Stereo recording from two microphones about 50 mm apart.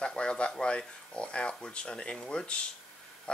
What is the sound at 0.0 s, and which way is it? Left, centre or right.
Speech, centre.